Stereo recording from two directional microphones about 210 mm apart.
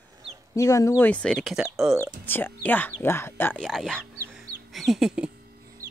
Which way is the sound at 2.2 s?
10° left (ahead or behind).